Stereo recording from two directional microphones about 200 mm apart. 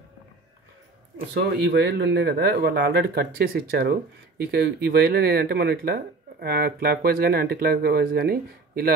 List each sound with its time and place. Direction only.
1.1 s speech: 55° right (ahead or behind)